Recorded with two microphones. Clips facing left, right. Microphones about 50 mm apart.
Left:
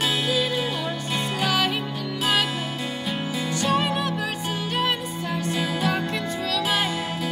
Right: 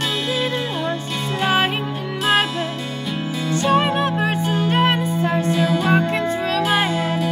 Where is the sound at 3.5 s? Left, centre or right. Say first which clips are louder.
Right 6 dB; right.